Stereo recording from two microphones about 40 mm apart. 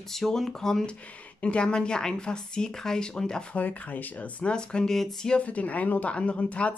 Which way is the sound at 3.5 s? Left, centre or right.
Left.